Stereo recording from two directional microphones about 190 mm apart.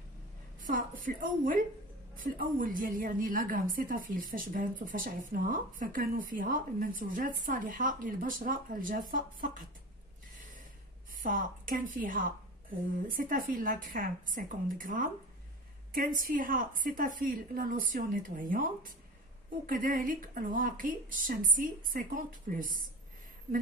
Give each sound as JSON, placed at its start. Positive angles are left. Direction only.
{"t": 0.7, "sound": "a woman's voice", "side_deg": -45}
{"t": 10.3, "sound": "gasp", "side_deg": -45}
{"t": 11.2, "sound": "a woman's voice", "side_deg": -45}